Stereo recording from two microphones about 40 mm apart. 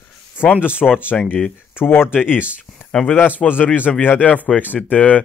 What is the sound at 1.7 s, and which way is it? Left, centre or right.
Speech, left.